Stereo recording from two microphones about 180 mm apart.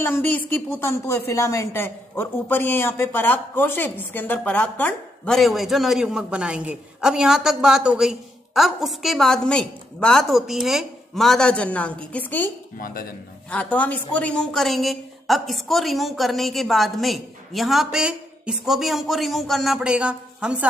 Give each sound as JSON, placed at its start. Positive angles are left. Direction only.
{"t": 0.0, "sound": "a woman's voice", "side_deg": 10}
{"t": 12.7, "sound": "speech", "side_deg": 55}
{"t": 13.5, "sound": "speech", "side_deg": 5}